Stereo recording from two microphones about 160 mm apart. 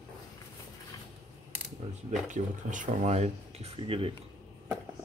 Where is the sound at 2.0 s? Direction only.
50° right (ahead or behind); by 4.1 s 35° right (ahead or behind).